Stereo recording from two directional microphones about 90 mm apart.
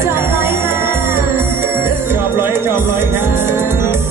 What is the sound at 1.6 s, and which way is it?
Music, 25° right (ahead or behind).